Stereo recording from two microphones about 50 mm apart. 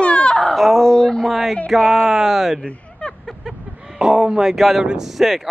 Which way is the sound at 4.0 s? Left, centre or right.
Centre.